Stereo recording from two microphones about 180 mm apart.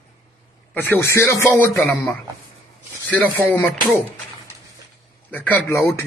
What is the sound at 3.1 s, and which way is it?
Speech, 10° left (ahead or behind).